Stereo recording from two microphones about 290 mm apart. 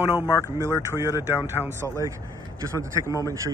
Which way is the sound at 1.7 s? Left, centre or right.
Centre.